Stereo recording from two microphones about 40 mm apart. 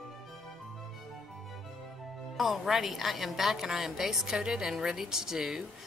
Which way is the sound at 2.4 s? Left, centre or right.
Centre.